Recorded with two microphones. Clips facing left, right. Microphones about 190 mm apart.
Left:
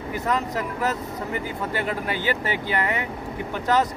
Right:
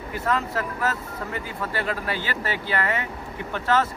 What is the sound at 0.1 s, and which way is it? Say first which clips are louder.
Speech: even; 20° left (ahead or behind).